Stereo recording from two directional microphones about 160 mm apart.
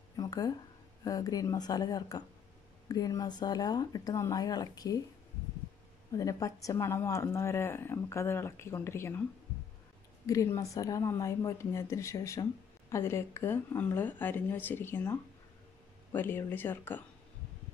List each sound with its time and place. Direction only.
0.1 s a sound: 25° left (ahead or behind)
1.0 s speech: 25° left (ahead or behind)
6.1 s speech: 20° left (ahead or behind)
10.2 s speech: 20° left (ahead or behind)